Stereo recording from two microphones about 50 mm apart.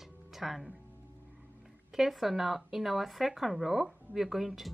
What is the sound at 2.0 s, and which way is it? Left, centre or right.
Speech, centre.